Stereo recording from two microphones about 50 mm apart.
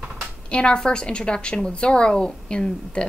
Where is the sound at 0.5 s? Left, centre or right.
Centre.